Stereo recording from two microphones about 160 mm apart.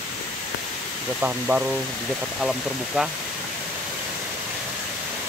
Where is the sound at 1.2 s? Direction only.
10° right (ahead or behind).